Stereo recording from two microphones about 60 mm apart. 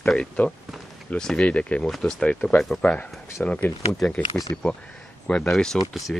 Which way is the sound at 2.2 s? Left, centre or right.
Centre.